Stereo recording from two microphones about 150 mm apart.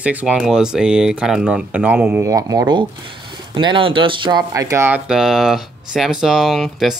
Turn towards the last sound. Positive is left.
turn(degrees=0)  # may be behind; listen again after turning